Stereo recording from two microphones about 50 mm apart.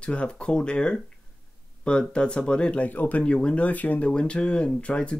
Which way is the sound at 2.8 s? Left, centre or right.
Left.